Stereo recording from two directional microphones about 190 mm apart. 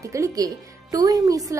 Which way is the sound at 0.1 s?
15° right (ahead or behind).